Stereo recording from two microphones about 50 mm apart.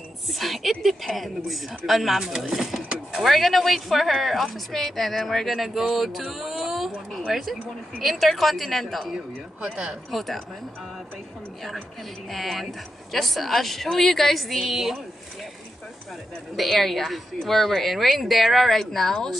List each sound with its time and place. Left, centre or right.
0.3 s a woman's voice: centre
6.3 s a sound: centre
7.1 s a sound: centre
8.0 s a woman's voice: centre
9.1 s speech: centre
10.1 s a woman's voice: centre
12.3 s a woman's voice: centre
16.5 s a woman's voice: centre